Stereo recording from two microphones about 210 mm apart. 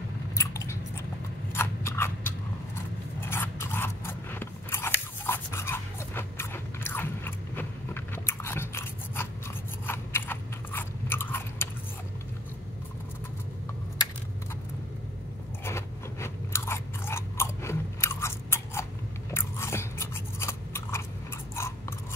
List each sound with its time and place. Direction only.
0.4 s chewing: 15° left (ahead or behind)
1.5 s a sound: 10° left (ahead or behind)
3.2 s crunch: 10° left (ahead or behind)
9.8 s chewing: 10° left (ahead or behind)
15.6 s chewing: 10° left (ahead or behind)
21.5 s a sound: 10° left (ahead or behind)